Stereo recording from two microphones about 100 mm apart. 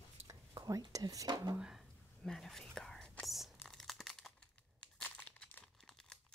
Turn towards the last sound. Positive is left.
turn(degrees=5)  # may be behind; listen again after turning